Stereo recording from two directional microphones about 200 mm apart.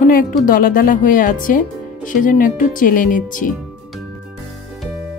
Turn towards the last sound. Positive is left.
turn(degrees=40)  # may be behind; listen again after turning